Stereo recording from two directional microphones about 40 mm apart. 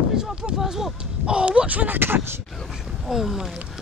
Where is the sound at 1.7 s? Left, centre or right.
Right.